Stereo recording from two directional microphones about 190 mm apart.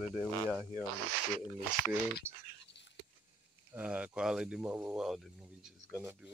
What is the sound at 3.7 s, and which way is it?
Speech, 5° right (ahead or behind).